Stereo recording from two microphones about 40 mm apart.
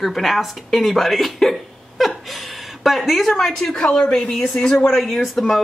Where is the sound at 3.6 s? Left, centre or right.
Centre.